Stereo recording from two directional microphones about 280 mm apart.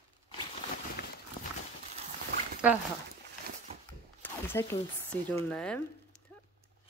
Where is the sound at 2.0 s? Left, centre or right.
Right.